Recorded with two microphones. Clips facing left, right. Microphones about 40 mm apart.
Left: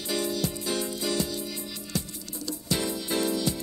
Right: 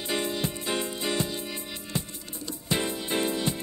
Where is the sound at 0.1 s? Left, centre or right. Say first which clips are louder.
Left 1 dB; right.